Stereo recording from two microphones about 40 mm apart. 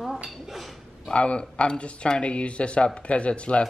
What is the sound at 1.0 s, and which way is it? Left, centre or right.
Speech, left.